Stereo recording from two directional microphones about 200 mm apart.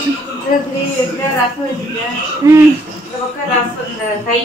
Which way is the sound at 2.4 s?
15° right (ahead or behind).